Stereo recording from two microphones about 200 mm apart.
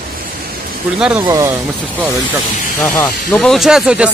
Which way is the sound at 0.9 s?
5° right (ahead or behind).